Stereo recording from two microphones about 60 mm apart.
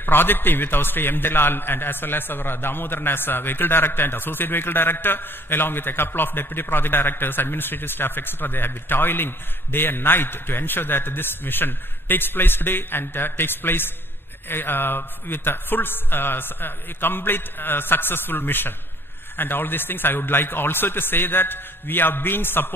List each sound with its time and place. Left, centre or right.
0.0 s a man's voice: left